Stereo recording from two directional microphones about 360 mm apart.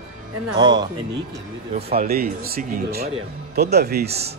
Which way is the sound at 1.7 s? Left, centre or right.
Right.